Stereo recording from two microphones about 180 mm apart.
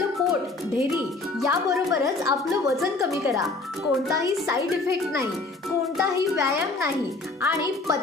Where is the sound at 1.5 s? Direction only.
15° right (ahead or behind).